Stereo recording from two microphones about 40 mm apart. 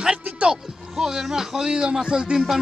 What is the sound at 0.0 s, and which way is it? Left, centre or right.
Music, centre.